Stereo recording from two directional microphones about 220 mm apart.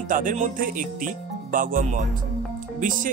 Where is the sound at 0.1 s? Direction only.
35° right (ahead or behind).